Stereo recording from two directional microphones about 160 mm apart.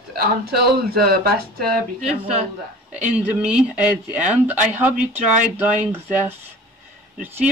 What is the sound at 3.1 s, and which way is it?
Speech, 5° right (ahead or behind).